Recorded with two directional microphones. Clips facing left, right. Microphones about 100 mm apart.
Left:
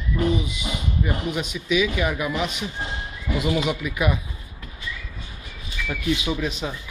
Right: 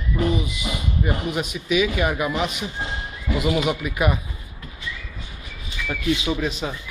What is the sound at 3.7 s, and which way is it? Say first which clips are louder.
Speech: right 2 dB; 50° right (ahead or behind).